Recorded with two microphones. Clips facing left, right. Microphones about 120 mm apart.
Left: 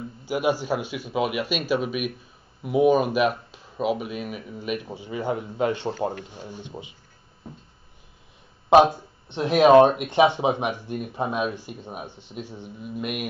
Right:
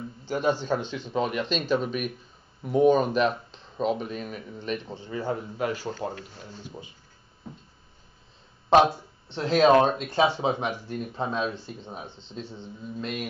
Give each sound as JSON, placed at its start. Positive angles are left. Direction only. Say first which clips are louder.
{"t": 0.2, "sound": "speech", "louder": "left 2 dB", "side_deg": 10}
{"t": 9.3, "sound": "speech", "louder": "left 4 dB", "side_deg": 15}